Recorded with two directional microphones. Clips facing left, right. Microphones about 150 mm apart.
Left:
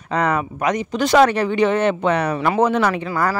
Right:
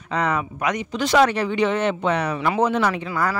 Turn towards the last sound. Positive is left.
turn(degrees=50)  # may be behind; listen again after turning